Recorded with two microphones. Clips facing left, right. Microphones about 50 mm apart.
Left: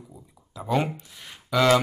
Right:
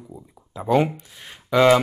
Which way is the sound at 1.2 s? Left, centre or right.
Right.